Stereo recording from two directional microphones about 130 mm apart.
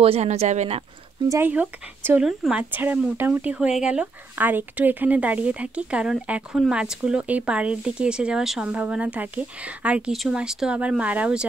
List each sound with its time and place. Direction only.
0.0 s speech: 55° right (ahead or behind)
1.3 s speech: 15° right (ahead or behind)